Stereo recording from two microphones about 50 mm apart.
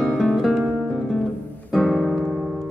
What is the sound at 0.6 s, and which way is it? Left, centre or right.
Music, centre.